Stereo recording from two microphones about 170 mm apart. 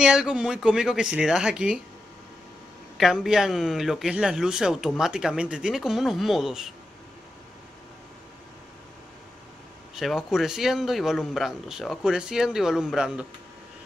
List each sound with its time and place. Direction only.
0.0 s speech: 5° right (ahead or behind)
3.0 s speech: centre (ahead or behind)
9.9 s speech: centre (ahead or behind)